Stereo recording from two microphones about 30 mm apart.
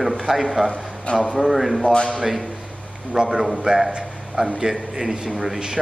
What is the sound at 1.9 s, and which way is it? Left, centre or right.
Speech, left.